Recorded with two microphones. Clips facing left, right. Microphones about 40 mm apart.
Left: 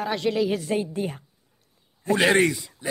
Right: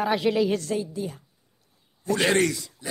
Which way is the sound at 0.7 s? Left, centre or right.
Left.